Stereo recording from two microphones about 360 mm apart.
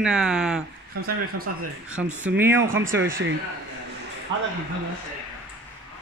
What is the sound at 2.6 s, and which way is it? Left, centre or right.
Speech, right.